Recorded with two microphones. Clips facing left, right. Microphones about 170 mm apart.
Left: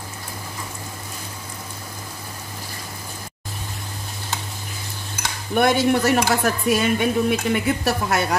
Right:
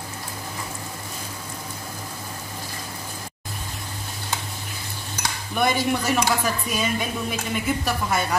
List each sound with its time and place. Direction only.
5.6 s speech: 65° left (ahead or behind)